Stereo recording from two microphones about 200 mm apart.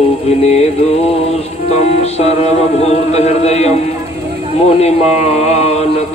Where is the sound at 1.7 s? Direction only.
30° left (ahead or behind).